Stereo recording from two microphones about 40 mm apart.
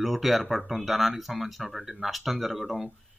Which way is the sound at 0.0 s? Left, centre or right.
Centre.